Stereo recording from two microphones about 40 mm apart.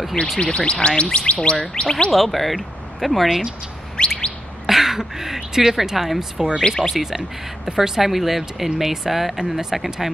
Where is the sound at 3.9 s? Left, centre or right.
Left.